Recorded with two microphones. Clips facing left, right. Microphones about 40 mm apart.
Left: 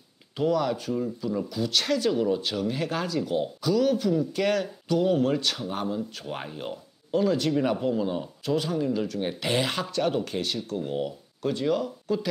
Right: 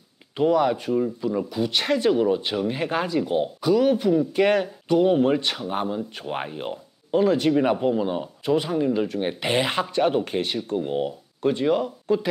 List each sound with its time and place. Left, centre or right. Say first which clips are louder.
0.4 s speech: right 5 dB; right